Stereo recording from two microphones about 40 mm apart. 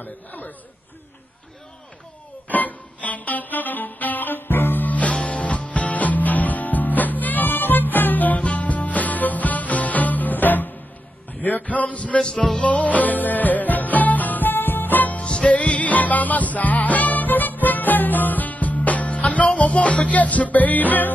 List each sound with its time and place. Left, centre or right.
0.0 s speech: left
2.4 s music: left
11.6 s a sound: left
12.6 s music: left
15.1 s music: left